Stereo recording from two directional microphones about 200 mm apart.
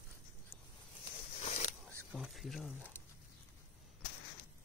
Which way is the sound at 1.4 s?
35° left (ahead or behind).